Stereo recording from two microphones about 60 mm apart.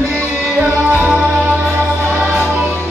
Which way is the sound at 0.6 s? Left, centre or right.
Right.